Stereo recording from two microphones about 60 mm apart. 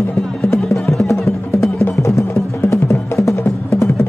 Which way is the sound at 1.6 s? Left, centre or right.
Left.